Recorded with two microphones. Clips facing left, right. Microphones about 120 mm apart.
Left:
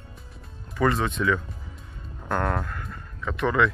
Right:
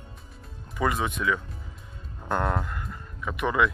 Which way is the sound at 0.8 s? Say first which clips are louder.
Left 3 dB; 10° right (ahead or behind).